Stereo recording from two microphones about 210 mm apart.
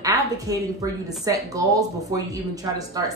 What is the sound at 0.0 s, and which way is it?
A woman's voice, 15° right (ahead or behind).